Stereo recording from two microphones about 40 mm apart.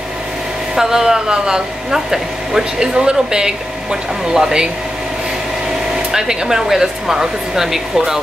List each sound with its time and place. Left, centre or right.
0.7 s a woman's voice: centre
6.1 s a woman's voice: centre